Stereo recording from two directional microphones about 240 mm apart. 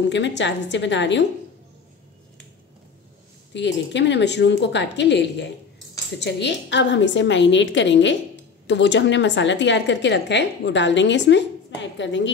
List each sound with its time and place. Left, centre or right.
0.0 s a woman's voice: left
3.5 s a woman's voice: left